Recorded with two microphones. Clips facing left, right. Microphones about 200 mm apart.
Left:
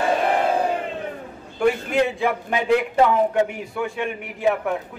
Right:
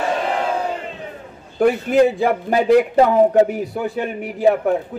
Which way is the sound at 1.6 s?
35° right (ahead or behind).